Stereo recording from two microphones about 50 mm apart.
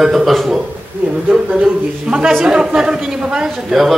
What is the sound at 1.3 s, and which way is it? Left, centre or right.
A man's voice, centre.